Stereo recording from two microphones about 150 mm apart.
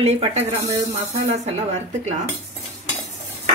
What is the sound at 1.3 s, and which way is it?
Speech, 45° right (ahead or behind).